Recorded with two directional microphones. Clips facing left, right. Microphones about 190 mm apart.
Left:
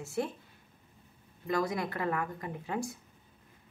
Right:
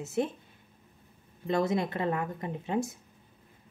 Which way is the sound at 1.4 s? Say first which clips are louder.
Right 4 dB; 25° right (ahead or behind).